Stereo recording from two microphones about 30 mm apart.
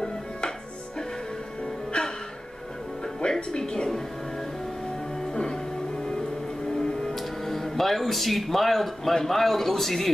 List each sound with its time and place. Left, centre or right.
1.6 s music: left
3.2 s music: left
5.2 s music: left
6.7 s music: left
7.2 s a man's voice: centre